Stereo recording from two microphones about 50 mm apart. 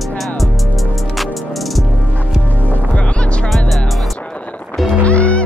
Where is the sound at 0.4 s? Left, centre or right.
Centre.